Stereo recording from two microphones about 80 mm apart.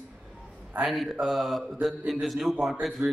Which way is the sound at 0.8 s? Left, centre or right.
Centre.